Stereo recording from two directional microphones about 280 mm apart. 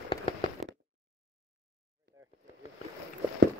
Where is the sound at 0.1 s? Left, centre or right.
Centre.